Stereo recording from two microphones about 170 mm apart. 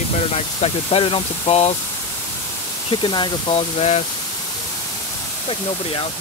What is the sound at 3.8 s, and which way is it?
Speech, 40° left (ahead or behind).